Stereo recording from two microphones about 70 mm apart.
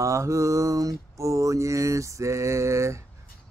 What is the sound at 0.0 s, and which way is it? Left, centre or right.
Mantra, right.